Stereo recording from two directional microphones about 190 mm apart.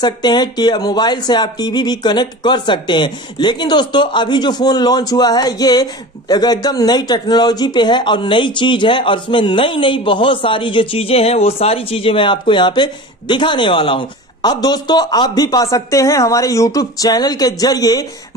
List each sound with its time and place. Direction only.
0.0 s speech: 20° left (ahead or behind)